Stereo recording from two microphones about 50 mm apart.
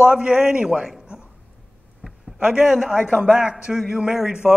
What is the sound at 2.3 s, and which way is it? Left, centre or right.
A man's voice, centre.